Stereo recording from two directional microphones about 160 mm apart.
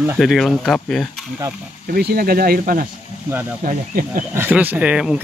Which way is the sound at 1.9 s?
75° right (ahead or behind).